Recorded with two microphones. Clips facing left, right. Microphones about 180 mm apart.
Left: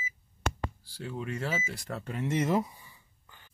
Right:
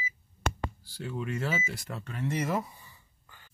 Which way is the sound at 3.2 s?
15° left (ahead or behind).